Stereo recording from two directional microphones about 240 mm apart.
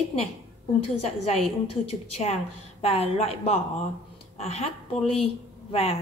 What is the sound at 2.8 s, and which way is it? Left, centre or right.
A woman's voice, left.